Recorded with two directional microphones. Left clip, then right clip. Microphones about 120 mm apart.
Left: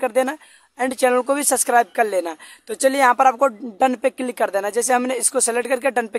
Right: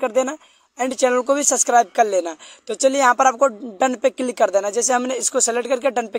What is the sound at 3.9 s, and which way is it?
Speech, 15° right (ahead or behind).